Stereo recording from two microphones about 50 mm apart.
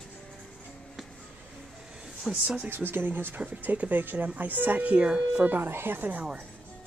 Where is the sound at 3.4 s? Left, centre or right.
Right.